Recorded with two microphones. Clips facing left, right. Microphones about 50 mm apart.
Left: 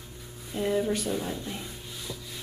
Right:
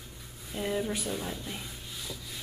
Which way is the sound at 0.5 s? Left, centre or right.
Centre.